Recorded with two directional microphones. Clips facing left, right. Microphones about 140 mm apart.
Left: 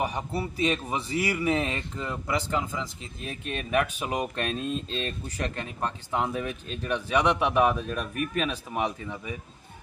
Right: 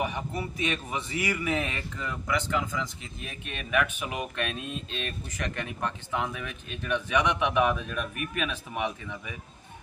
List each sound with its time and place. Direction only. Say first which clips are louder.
0.0 s a man's voice: left 2 dB; 35° left (ahead or behind)